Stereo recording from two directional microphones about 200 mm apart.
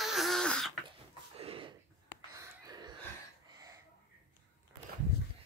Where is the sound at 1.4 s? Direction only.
30° right (ahead or behind).